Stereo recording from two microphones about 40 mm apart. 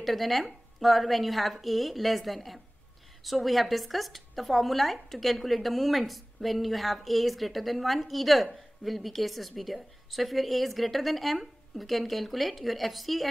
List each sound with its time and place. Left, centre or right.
0.0 s speech: centre